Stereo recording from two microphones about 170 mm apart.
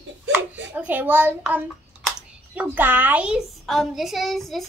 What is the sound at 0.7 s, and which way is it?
A child's voice, 10° right (ahead or behind).